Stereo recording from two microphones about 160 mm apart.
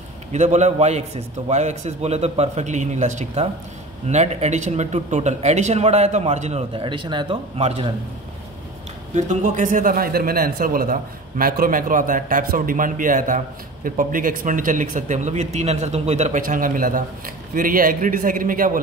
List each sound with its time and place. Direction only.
0.3 s a man's voice: 45° right (ahead or behind)
6.7 s speech: 30° right (ahead or behind)
9.1 s a man's voice: 50° right (ahead or behind)